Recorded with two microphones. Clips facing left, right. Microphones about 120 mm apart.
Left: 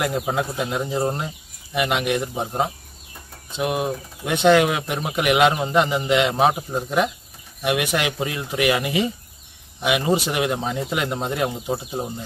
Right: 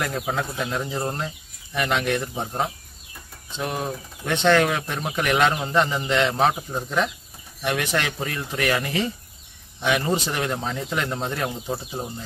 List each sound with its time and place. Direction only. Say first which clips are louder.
0.3 s speech: left 3 dB; 15° left (ahead or behind)